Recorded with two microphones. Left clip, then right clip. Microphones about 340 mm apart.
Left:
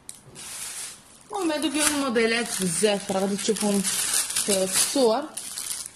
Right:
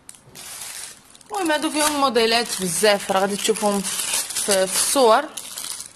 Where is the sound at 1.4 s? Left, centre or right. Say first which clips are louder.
Right 4 dB; centre.